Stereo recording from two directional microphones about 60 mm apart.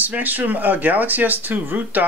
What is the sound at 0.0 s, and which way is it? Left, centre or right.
Speech, right.